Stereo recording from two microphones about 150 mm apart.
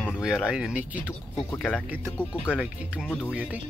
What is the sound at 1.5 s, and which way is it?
Speech, 10° left (ahead or behind).